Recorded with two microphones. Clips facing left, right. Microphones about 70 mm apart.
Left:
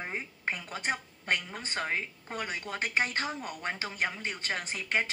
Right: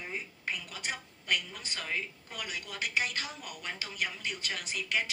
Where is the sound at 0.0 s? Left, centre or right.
Left.